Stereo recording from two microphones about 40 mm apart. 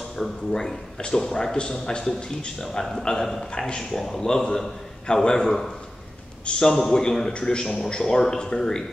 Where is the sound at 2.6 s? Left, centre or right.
Centre.